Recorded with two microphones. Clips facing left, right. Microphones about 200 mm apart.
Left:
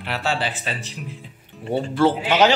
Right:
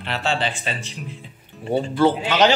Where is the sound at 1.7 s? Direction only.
Centre (ahead or behind).